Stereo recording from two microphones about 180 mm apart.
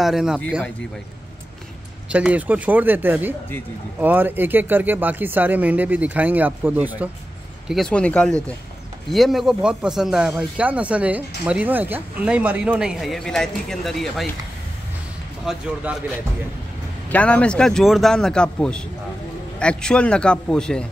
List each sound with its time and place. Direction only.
0.0 s speech: centre (ahead or behind)
2.0 s speech: 5° right (ahead or behind)
15.4 s speech: 5° right (ahead or behind)
17.1 s speech: 5° left (ahead or behind)